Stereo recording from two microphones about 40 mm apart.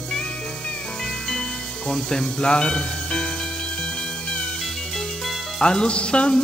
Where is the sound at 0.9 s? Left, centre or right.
Centre.